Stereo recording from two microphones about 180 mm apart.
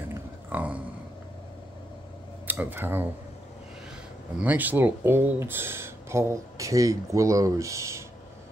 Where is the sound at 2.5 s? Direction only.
10° right (ahead or behind).